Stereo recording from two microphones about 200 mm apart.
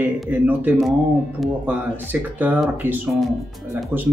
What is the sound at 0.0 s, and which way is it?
Speech, 10° right (ahead or behind).